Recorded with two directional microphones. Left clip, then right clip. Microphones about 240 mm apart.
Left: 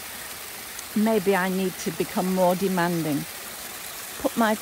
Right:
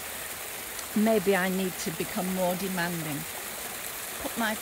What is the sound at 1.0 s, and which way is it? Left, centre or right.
Speech, centre.